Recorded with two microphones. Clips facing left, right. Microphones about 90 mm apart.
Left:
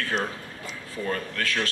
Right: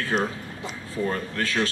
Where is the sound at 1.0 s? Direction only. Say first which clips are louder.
Right 1 dB; 25° right (ahead or behind).